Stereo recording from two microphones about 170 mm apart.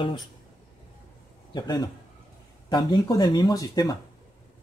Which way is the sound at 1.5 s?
25° left (ahead or behind).